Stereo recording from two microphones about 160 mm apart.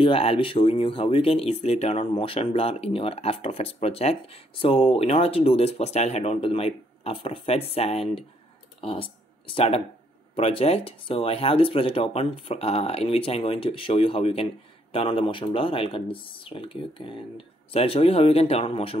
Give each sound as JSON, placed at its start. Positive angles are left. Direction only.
{"t": 0.0, "sound": "speech", "side_deg": 35}